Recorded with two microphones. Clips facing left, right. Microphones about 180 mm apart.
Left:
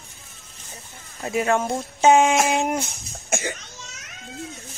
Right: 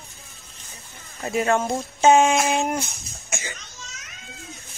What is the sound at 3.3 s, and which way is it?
Cough, 55° left (ahead or behind).